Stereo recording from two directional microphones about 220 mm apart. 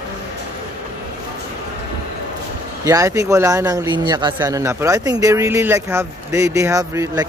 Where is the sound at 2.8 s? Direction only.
15° right (ahead or behind).